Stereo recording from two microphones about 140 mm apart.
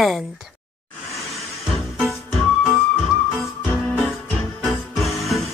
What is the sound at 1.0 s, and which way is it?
Music, centre (ahead or behind).